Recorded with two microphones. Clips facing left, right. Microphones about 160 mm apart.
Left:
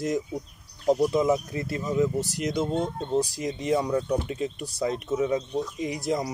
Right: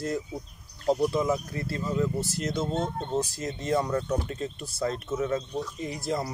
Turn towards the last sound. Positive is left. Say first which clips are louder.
# left 3 dB
turn(degrees=15)  # may be behind; listen again after turning